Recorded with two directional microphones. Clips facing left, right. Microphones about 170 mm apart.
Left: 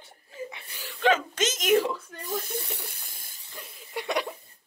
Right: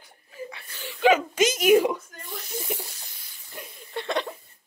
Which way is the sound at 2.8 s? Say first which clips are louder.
Right 2 dB; 55° left (ahead or behind).